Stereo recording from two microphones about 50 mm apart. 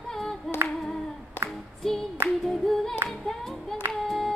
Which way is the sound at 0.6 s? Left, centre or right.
Right.